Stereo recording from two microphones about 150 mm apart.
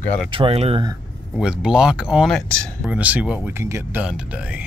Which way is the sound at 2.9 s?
10° right (ahead or behind).